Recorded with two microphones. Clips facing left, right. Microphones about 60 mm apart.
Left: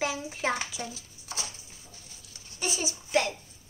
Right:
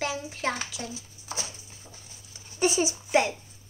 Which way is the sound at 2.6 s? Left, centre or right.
Right.